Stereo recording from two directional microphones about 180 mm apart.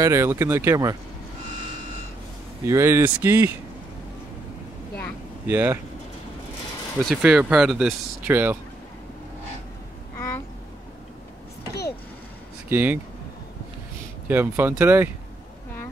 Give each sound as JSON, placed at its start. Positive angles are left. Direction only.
{"t": 0.0, "sound": "speech", "side_deg": -15}
{"t": 2.6, "sound": "speech", "side_deg": -15}
{"t": 5.5, "sound": "speech", "side_deg": -10}
{"t": 7.0, "sound": "speech", "side_deg": 0}
{"t": 12.6, "sound": "speech", "side_deg": -10}
{"t": 14.2, "sound": "speech", "side_deg": -10}